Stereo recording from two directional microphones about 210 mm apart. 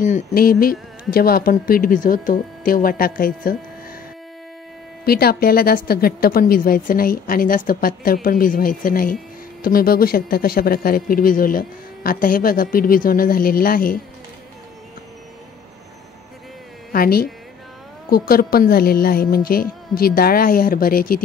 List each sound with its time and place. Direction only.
0.0 s a woman's voice: 40° left (ahead or behind)
5.0 s a woman's voice: 45° left (ahead or behind)
16.9 s a woman's voice: 45° left (ahead or behind)